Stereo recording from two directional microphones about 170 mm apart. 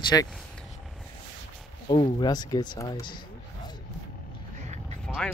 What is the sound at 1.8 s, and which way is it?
Speech, 25° left (ahead or behind).